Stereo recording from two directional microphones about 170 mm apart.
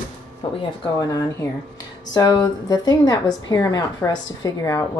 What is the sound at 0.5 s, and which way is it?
A woman's voice, 20° left (ahead or behind).